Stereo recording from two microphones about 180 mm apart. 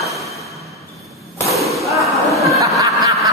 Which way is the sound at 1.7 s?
Centre (ahead or behind).